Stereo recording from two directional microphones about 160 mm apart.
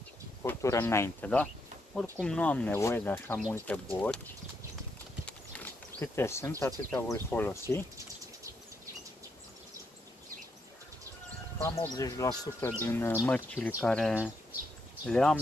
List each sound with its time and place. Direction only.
0.4 s speech: 20° left (ahead or behind)
5.9 s speech: 15° left (ahead or behind)
11.5 s speech: 15° left (ahead or behind)
13.6 s speech: 10° right (ahead or behind)
13.8 s speech: 5° left (ahead or behind)